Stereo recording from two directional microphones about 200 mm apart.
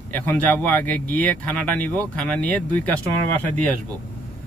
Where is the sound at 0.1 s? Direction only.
10° left (ahead or behind).